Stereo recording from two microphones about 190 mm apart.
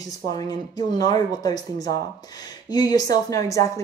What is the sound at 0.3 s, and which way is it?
A woman's voice, 20° left (ahead or behind).